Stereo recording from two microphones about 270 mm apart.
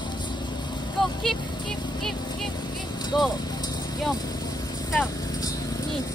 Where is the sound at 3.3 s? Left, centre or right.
Centre.